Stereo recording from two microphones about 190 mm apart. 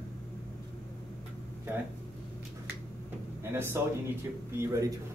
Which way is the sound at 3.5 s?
15° right (ahead or behind).